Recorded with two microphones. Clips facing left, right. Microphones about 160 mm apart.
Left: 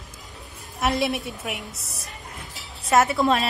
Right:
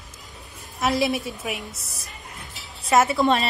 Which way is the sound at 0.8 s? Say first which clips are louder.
Right 1 dB; centre (ahead or behind).